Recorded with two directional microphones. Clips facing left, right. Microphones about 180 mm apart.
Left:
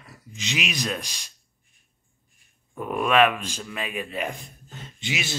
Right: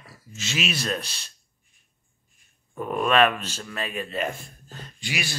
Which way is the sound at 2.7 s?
5° left (ahead or behind).